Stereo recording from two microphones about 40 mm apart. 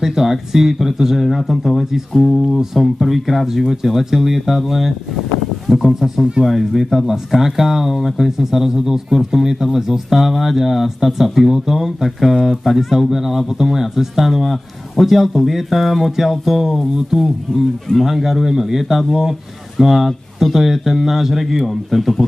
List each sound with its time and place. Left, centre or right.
0.0 s speech: centre
17.5 s speech: centre
18.0 s speech: centre